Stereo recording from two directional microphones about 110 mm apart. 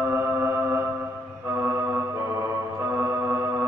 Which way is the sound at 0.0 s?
20° right (ahead or behind).